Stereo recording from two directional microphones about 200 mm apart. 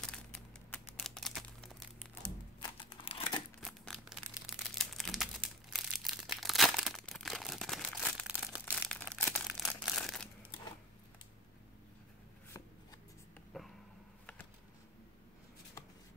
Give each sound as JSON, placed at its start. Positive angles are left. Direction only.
{"t": 0.1, "sound": "crumpling", "side_deg": 5}
{"t": 2.2, "sound": "a sound", "side_deg": 10}
{"t": 2.8, "sound": "crumpling", "side_deg": 25}
{"t": 3.6, "sound": "crumpling", "side_deg": 0}
{"t": 8.6, "sound": "crumpling", "side_deg": 5}
{"t": 13.5, "sound": "a sound", "side_deg": 0}